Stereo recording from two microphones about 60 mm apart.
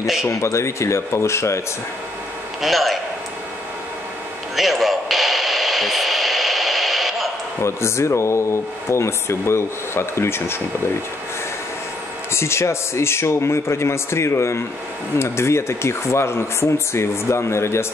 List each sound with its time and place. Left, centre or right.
0.0 s a man's voice: centre
0.3 s speech: left
2.6 s a man's voice: centre
4.6 s radio: centre
7.6 s speech: left
12.3 s speech: left